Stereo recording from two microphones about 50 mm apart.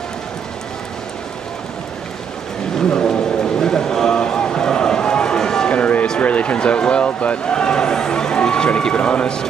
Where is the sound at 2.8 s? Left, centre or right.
Centre.